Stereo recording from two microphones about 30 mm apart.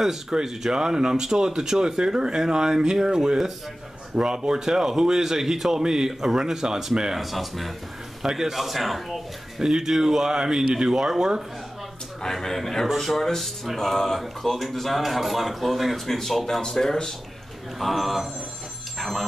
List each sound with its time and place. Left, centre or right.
0.3 s speech: right
7.2 s speech: centre
8.2 s speech: centre
8.5 s speech: centre
9.6 s speech: centre
12.2 s speech: centre
17.7 s speech: centre
18.9 s dog: centre